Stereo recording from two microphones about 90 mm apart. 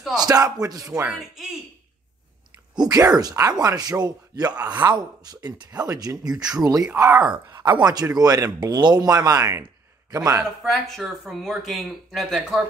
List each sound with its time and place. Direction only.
0.2 s speech: 45° right (ahead or behind)
1.1 s speech: centre (ahead or behind)
2.7 s speech: 45° right (ahead or behind)
4.6 s speech: 15° right (ahead or behind)
4.8 s speech: 50° right (ahead or behind)
7.0 s speech: 25° right (ahead or behind)
7.5 s speech: 60° right (ahead or behind); by 10.4 s 45° right (ahead or behind)
10.6 s speech: centre (ahead or behind)